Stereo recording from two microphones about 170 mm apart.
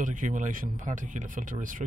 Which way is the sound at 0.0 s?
50° right (ahead or behind).